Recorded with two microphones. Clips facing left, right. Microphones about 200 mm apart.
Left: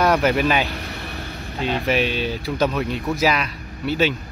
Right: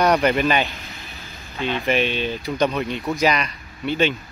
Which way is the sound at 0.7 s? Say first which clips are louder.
Left 8 dB; 65° left (ahead or behind).